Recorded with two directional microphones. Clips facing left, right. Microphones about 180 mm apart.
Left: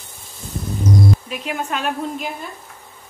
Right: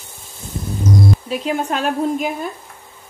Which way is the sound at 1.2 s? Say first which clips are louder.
Right 5 dB; 35° right (ahead or behind).